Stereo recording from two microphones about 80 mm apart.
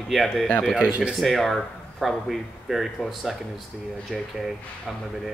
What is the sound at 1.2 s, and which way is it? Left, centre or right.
Speech, centre.